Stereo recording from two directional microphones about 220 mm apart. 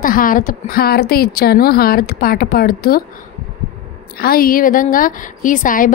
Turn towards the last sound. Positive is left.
turn(degrees=40)  # may be behind; listen again after turning